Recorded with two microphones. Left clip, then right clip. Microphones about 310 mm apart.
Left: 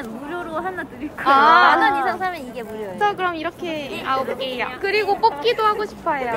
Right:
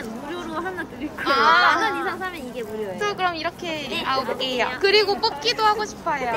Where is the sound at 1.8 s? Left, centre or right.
Centre.